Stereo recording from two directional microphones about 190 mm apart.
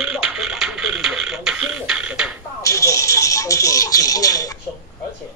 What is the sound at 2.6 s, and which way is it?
Speech, 15° left (ahead or behind).